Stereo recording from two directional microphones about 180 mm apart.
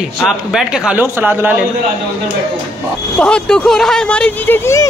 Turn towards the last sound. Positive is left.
turn(degrees=15)  # may be behind; listen again after turning